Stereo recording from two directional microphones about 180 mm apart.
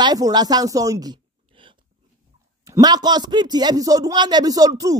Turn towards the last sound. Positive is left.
turn(degrees=-20)  # may be behind; listen again after turning